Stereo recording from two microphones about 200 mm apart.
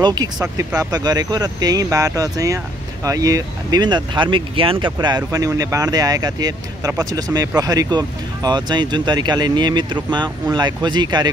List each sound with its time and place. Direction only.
0.0 s speech: 20° right (ahead or behind)